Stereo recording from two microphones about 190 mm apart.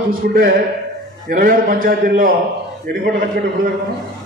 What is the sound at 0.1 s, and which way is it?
A man's voice, 50° right (ahead or behind).